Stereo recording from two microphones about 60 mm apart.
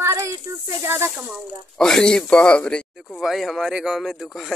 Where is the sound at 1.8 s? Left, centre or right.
Centre.